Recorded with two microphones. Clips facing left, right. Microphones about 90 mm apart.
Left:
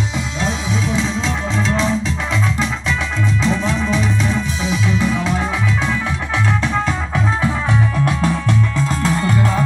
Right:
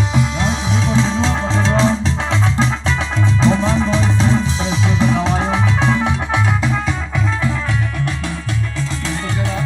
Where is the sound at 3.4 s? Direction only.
35° right (ahead or behind).